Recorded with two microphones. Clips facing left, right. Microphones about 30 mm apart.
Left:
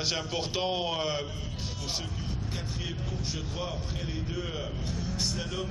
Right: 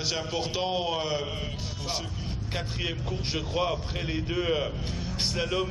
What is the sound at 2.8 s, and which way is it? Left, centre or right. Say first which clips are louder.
A man's voice: right 4 dB; right.